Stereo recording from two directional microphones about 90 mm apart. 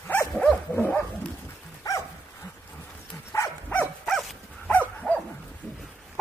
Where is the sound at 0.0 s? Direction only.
30° left (ahead or behind).